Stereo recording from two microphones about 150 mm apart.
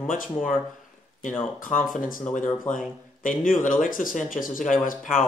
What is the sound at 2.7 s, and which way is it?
Speech, 10° left (ahead or behind).